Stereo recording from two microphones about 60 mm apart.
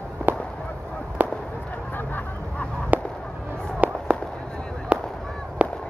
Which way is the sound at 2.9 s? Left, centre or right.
Right.